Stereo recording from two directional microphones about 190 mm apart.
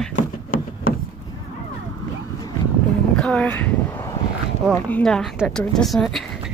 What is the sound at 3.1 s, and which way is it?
Speech, 5° left (ahead or behind).